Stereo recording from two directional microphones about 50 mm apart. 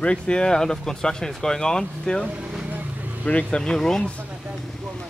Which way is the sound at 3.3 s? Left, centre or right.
Left.